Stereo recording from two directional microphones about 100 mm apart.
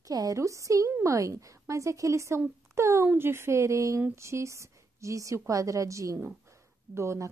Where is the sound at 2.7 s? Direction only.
30° right (ahead or behind).